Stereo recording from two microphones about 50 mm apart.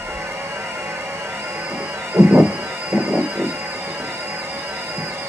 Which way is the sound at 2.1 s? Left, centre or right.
Right.